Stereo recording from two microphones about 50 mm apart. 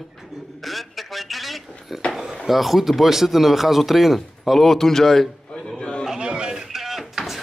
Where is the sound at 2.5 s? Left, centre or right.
Centre.